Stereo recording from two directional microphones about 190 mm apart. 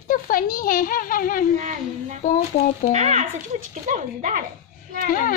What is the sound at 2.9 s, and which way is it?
Speech, 35° right (ahead or behind).